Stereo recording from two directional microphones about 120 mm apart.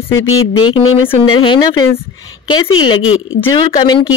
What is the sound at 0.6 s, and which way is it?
Speech, 40° left (ahead or behind).